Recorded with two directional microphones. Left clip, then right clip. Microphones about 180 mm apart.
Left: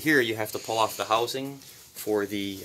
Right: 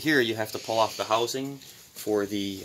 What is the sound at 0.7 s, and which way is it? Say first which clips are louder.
Speech: right 1 dB; 45° right (ahead or behind).